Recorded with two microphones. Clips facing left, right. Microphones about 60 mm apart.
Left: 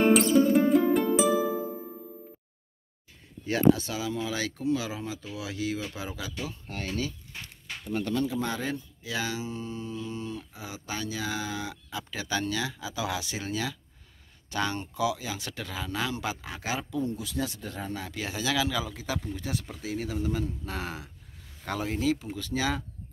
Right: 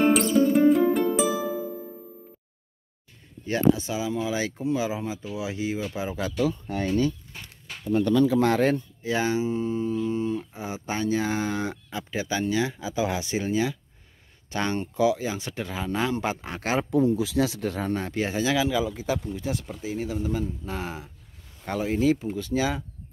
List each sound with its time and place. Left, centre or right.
0.0 s music: centre
3.7 s speech: centre
8.4 s speech: right
9.0 s speech: right
12.0 s speech: right
12.6 s speech: right
14.5 s speech: right
17.0 s speech: right
17.9 s speech: right; by 21.1 s centre
21.6 s speech: centre
21.9 s speech: right